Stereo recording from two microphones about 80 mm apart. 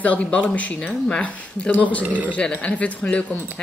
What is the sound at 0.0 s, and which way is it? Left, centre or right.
Speech, centre.